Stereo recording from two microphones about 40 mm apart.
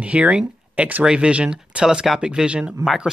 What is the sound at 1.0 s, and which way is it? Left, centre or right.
Speech, right.